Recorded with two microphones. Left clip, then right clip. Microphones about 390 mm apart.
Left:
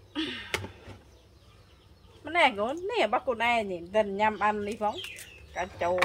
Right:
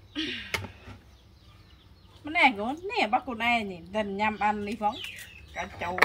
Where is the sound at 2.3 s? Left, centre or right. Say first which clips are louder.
Right 1 dB; centre.